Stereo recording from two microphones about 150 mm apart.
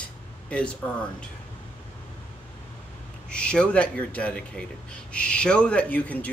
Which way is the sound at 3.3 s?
5° left (ahead or behind).